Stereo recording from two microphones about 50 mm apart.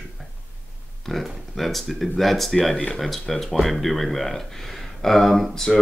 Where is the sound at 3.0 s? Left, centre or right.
Centre.